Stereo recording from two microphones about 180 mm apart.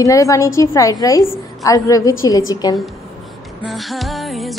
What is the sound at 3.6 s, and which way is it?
Speech, centre (ahead or behind).